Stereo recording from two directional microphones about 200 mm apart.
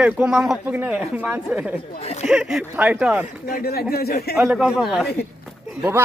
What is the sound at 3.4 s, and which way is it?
Speech, 50° left (ahead or behind).